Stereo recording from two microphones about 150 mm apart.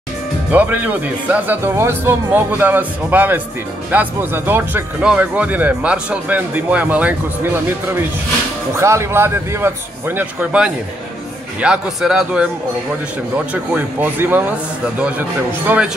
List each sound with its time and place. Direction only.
0.5 s speech: 10° right (ahead or behind)
13.5 s speech: 10° right (ahead or behind)